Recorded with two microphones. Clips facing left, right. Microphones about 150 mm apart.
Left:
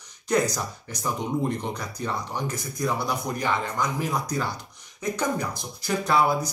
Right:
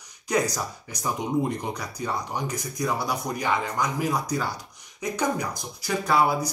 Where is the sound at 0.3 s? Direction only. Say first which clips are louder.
Left 1 dB; 10° right (ahead or behind).